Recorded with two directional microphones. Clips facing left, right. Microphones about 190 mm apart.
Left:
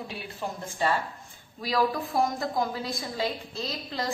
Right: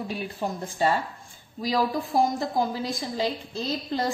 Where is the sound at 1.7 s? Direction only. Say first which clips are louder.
Right 1 dB; 30° right (ahead or behind).